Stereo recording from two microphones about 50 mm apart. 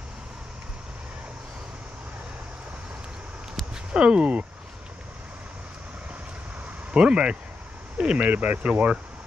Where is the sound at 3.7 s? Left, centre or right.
Centre.